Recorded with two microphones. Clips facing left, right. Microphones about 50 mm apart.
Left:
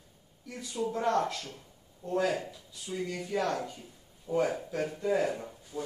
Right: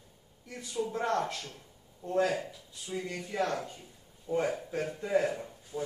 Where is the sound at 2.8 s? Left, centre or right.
Centre.